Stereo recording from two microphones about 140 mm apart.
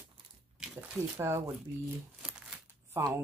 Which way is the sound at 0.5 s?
5° right (ahead or behind).